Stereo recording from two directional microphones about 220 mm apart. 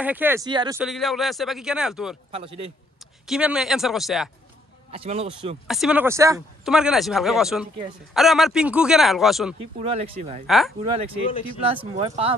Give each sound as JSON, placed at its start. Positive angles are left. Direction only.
{"t": 0.0, "sound": "speech", "side_deg": -10}
{"t": 0.5, "sound": "speech", "side_deg": -20}
{"t": 0.7, "sound": "speech", "side_deg": 0}
{"t": 2.3, "sound": "speech", "side_deg": -25}
{"t": 3.3, "sound": "speech", "side_deg": -5}
{"t": 4.9, "sound": "speech", "side_deg": -25}
{"t": 5.7, "sound": "speech", "side_deg": -5}
{"t": 6.6, "sound": "speech", "side_deg": -5}
{"t": 9.8, "sound": "speech", "side_deg": -30}
{"t": 10.4, "sound": "speech", "side_deg": 0}
{"t": 11.6, "sound": "speech", "side_deg": -25}